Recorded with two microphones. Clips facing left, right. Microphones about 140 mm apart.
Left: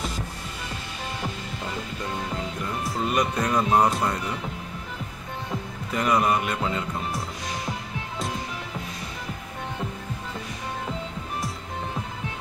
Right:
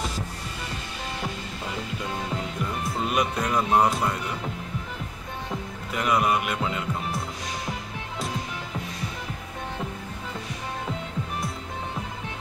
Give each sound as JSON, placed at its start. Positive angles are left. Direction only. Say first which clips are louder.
{"t": 3.1, "sound": "speech", "louder": "left 2 dB", "side_deg": -5}
{"t": 5.9, "sound": "speech", "louder": "left 1 dB", "side_deg": -5}